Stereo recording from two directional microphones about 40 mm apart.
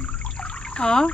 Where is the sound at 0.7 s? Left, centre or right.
Left.